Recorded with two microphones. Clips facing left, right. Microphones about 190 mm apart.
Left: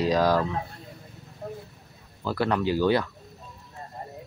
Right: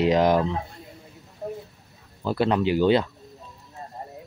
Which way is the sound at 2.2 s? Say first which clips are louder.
Right 3 dB; 20° right (ahead or behind).